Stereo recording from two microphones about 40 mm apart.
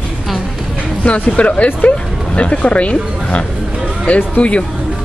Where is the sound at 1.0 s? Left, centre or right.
Left.